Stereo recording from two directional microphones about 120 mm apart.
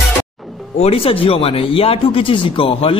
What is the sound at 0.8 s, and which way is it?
A man's voice, 55° left (ahead or behind).